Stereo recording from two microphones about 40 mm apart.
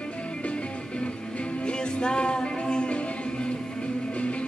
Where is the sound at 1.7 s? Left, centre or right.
Left.